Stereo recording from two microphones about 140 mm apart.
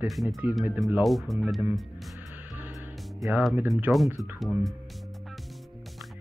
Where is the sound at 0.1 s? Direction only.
Centre (ahead or behind).